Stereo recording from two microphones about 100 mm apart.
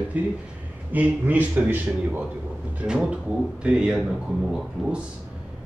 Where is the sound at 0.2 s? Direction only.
15° right (ahead or behind).